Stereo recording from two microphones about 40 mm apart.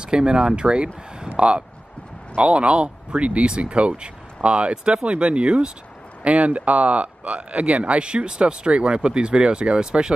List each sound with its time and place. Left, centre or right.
0.0 s speech: right
1.2 s a sound: right
2.4 s speech: right